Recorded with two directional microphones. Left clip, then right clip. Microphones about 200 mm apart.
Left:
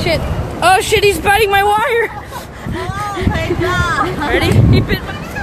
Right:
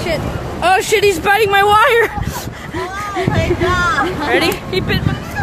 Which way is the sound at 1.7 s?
50° right (ahead or behind).